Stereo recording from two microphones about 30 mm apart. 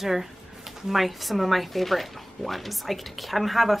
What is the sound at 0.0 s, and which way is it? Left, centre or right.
Speech, centre.